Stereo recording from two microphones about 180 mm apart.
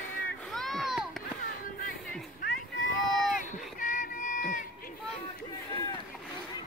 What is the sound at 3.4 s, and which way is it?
Run, 45° left (ahead or behind).